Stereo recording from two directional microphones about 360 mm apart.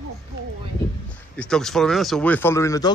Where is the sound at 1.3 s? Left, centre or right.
Centre.